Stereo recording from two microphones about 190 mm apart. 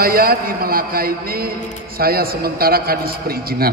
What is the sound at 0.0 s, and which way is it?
A man's voice, 50° right (ahead or behind).